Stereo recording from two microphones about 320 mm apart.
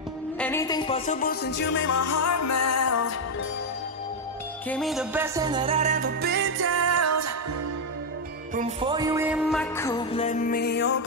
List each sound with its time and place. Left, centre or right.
0.4 s music: centre; by 1.9 s left
1.9 s music: left
4.6 s music: centre; by 7.3 s right
8.5 s music: centre; by 11.0 s left